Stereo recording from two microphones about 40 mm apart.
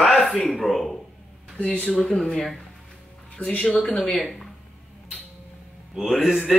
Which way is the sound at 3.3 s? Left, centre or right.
Left.